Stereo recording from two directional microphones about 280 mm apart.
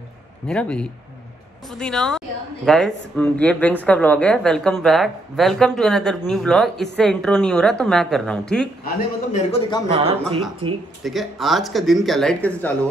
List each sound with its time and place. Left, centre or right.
0.5 s a woman's voice: centre
8.8 s a man's voice: left
9.8 s speech: right
11.1 s a woman's voice: centre